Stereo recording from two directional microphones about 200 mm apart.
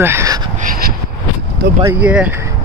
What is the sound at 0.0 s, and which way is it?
Speech, 15° right (ahead or behind).